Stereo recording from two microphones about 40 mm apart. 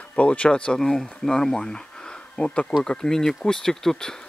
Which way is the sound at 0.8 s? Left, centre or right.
Centre.